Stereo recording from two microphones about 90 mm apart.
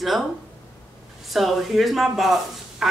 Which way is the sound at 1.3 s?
Centre (ahead or behind).